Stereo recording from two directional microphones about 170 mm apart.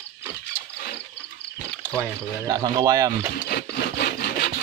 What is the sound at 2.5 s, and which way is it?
Speech, 20° right (ahead or behind).